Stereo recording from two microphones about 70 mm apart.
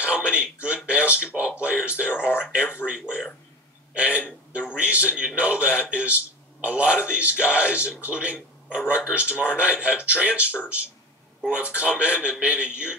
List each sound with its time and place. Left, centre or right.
0.0 s a man's voice: centre
2.0 s speech: left
2.5 s a man's voice: centre
11.7 s a man's voice: centre